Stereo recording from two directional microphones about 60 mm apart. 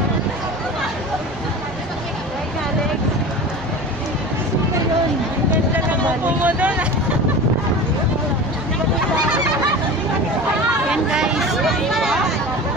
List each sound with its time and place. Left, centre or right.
6.4 s speech: right
10.9 s chatter: centre